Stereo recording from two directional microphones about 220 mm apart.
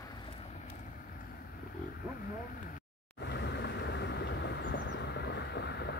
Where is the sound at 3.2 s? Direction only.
50° left (ahead or behind).